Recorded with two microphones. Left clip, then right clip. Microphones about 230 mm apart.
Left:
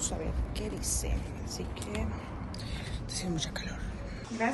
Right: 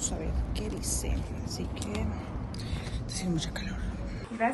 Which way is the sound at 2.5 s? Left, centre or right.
Centre.